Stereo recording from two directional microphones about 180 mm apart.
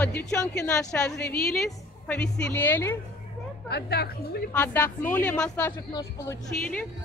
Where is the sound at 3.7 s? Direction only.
65° left (ahead or behind).